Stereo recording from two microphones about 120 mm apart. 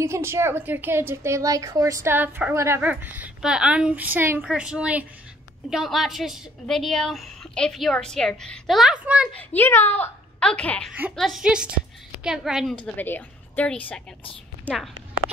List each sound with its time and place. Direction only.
0.0 s a woman's voice: 20° right (ahead or behind)
9.3 s speech: 15° left (ahead or behind)
10.9 s speech: 10° right (ahead or behind)
11.1 s a woman's voice: centre (ahead or behind)
12.7 s speech: 10° left (ahead or behind)